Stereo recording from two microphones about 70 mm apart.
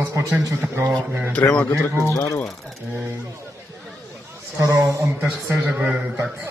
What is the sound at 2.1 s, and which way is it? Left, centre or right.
Speech, left.